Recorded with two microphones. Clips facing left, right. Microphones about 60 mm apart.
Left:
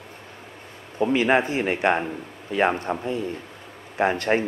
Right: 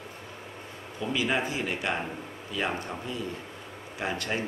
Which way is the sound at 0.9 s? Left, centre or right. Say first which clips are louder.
Left 9 dB; left.